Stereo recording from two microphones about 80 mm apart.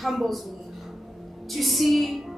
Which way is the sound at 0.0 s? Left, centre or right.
Centre.